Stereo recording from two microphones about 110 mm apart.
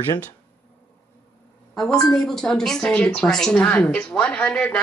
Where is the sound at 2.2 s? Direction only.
5° left (ahead or behind).